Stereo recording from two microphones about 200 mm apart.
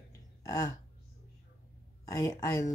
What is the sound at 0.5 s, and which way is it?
Speech, 15° left (ahead or behind).